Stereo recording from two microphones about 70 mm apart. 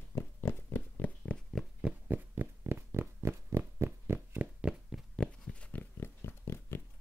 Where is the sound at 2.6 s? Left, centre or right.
Right.